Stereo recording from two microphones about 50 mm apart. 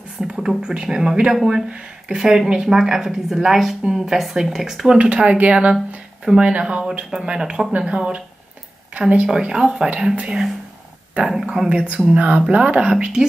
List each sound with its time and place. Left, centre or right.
0.2 s a sound: centre
0.6 s speech: centre
1.7 s speech: right
2.1 s speech: centre
4.9 s speech: right
11.7 s speech: right